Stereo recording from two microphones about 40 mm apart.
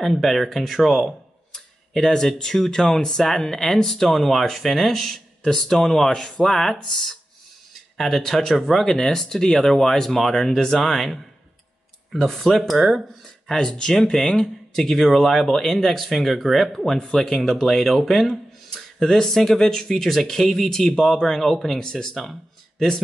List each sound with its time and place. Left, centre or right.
0.0 s speech: centre
1.5 s speech: centre
13.5 s speech: centre